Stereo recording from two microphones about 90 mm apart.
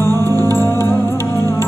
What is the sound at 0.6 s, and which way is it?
Music, 25° left (ahead or behind).